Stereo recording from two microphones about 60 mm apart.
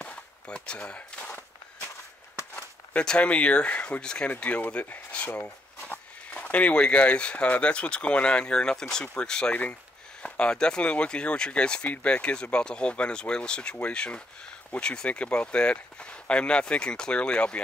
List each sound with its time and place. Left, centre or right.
0.0 s walk: centre
2.5 s speech: centre